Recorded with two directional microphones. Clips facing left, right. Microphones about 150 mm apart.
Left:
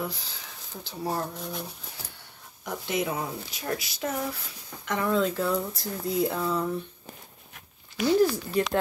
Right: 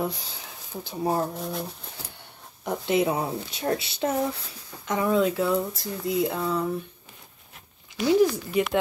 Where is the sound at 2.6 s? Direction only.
25° right (ahead or behind).